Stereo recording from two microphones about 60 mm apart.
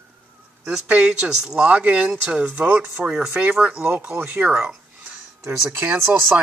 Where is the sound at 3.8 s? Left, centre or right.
Right.